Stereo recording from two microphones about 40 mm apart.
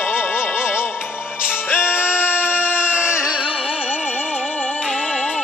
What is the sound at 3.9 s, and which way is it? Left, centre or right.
Music, left.